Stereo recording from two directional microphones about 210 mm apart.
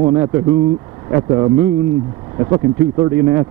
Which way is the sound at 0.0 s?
15° right (ahead or behind).